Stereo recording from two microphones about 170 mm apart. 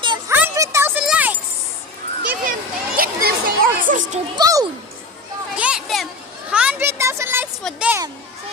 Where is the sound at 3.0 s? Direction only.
60° right (ahead or behind).